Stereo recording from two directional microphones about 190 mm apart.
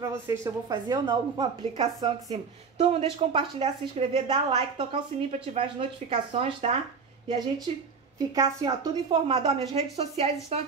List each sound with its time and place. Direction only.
0.0 s a woman's voice: 15° right (ahead or behind); by 6.8 s 30° right (ahead or behind)
8.4 s a woman's voice: 20° right (ahead or behind)
9.3 s a woman's voice: 30° right (ahead or behind)